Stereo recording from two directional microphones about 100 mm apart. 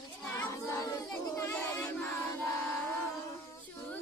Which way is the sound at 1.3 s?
30° left (ahead or behind).